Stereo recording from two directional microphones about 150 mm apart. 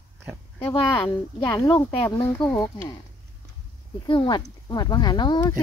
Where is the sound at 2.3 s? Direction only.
10° left (ahead or behind).